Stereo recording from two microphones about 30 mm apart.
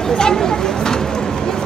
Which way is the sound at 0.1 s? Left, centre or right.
Centre.